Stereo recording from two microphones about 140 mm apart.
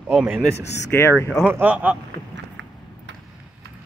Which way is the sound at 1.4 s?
10° right (ahead or behind).